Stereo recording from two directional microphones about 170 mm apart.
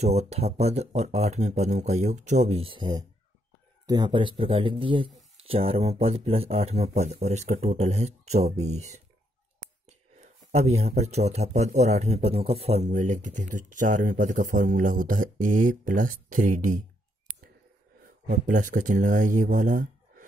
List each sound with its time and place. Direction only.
0.0 s speech: 40° right (ahead or behind)
18.0 s speech: 50° right (ahead or behind)